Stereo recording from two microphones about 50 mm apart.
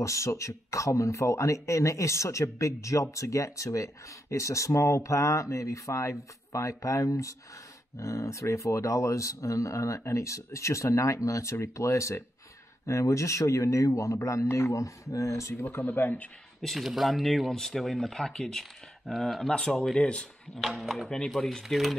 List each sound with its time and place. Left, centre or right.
0.0 s speech: left
15.8 s speech: left
16.6 s speech: centre
19.5 s speech: centre
20.5 s speech: centre
21.4 s speech: centre
21.6 s speech: centre